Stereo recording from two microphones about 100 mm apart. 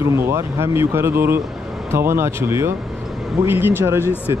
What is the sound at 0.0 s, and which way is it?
Speech, 25° right (ahead or behind).